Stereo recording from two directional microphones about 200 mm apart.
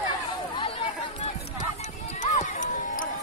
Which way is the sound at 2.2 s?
35° left (ahead or behind).